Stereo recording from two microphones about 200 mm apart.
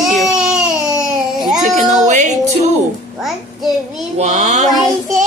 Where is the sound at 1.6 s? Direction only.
35° right (ahead or behind).